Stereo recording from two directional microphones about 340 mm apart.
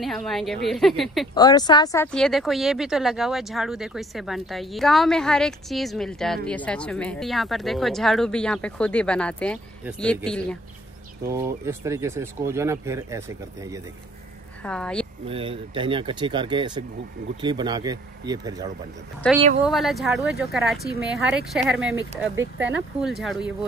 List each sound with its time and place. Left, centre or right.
0.0 s speech: centre
1.3 s speech: centre
11.2 s speech: centre
14.6 s speech: centre
15.2 s speech: centre
19.6 s speech: centre
22.4 s speech: right
23.0 s speech: centre